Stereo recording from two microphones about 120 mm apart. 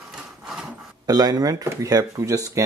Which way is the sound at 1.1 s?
35° right (ahead or behind).